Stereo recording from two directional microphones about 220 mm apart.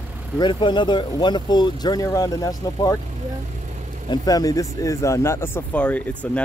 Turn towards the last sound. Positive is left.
turn(degrees=5)  # may be behind; listen again after turning